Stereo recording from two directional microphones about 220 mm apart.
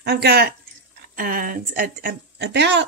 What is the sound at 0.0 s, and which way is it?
Speech, 45° right (ahead or behind).